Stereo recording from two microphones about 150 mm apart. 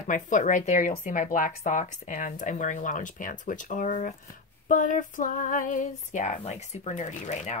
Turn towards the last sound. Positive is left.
turn(degrees=50)  # may be behind; listen again after turning